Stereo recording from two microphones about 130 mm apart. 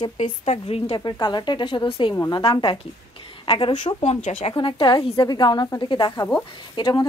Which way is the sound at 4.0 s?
60° left (ahead or behind).